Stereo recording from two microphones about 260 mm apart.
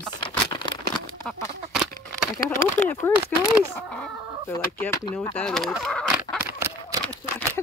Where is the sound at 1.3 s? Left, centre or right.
Centre.